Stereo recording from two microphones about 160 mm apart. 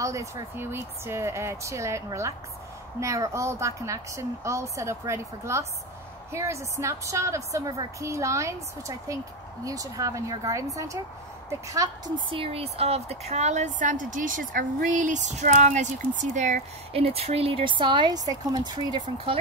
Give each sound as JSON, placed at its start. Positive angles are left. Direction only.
{"t": 0.0, "sound": "a woman's voice", "side_deg": -20}
{"t": 12.3, "sound": "a woman's voice", "side_deg": -35}